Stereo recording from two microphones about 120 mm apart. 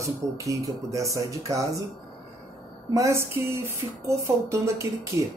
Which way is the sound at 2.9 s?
25° right (ahead or behind).